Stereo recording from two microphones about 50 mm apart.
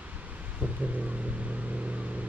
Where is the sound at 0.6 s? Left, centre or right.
Right.